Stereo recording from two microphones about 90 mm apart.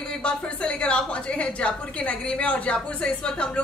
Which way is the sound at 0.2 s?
10° left (ahead or behind).